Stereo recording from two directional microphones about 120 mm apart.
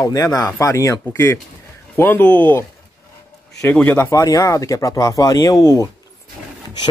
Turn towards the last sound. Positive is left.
turn(degrees=25)  # may be behind; listen again after turning